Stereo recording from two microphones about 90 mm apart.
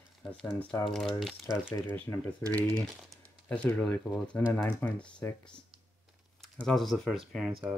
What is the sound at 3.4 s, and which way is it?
Speech, 15° left (ahead or behind).